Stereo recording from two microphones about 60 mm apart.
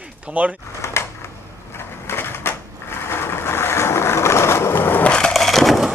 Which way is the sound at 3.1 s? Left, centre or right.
Left.